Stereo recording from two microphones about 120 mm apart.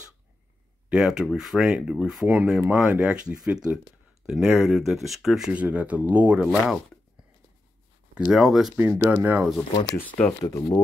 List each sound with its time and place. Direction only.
0.8 s speech: 5° right (ahead or behind)
8.3 s speech: centre (ahead or behind)
8.7 s speech: 15° right (ahead or behind)
9.9 s speech: 10° left (ahead or behind)
10.4 s speech: 30° left (ahead or behind)